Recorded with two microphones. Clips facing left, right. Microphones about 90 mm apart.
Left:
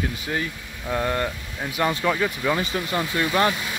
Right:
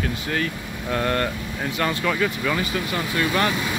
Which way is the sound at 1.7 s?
20° left (ahead or behind).